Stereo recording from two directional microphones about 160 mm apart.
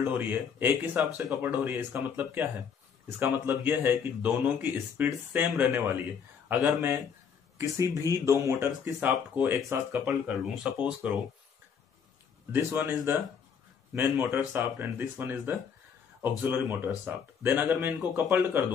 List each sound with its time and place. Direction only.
0.0 s speech: 10° right (ahead or behind)
12.5 s speech: 15° right (ahead or behind)